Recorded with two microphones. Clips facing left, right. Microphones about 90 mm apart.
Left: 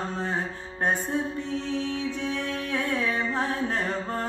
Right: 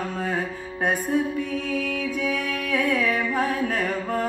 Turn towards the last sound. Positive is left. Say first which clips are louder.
# right 3 dB
turn(degrees=25)  # may be behind; listen again after turning